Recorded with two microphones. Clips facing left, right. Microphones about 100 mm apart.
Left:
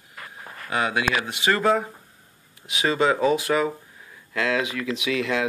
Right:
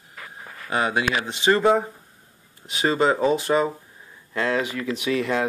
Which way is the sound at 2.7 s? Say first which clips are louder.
Right 1 dB; 35° right (ahead or behind).